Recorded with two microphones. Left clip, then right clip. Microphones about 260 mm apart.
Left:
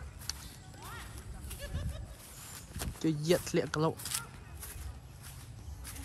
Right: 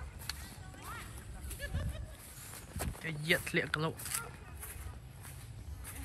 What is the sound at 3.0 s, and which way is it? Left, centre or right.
Speech, centre.